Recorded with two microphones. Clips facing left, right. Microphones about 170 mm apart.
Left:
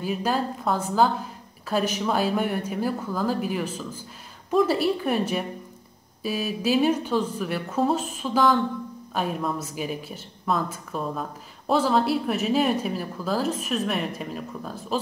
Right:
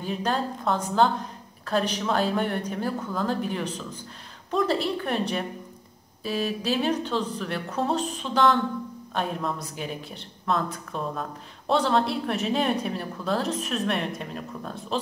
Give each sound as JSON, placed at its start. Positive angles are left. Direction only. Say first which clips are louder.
{"t": 0.0, "sound": "a woman's voice", "louder": "left 2 dB", "side_deg": 5}